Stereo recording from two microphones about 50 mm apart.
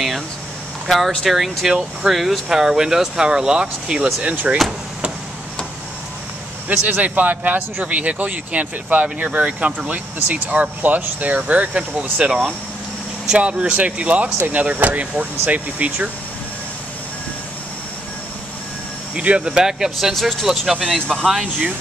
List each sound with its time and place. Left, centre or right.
0.8 s speech: centre; by 4.6 s right
6.7 s a man's voice: right
7.8 s speech: right
12.3 s speech: centre
13.4 s speech: right
19.1 s speech: right
19.5 s speech: centre
20.2 s speech: centre
21.3 s speech: centre